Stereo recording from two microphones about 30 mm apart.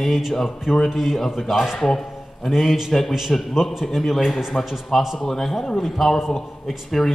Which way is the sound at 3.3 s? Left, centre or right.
Centre.